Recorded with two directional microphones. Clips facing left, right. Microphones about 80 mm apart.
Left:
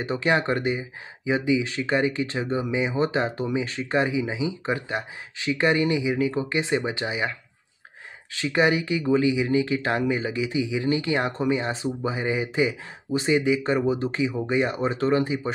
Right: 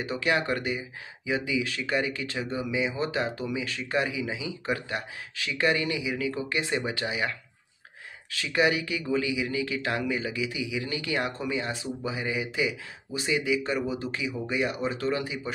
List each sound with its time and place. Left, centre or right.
0.0 s speech: left